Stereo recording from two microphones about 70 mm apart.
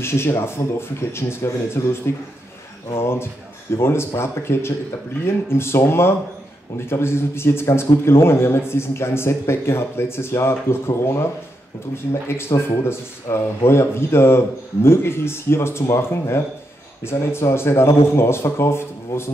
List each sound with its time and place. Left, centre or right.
0.0 s a man's voice: left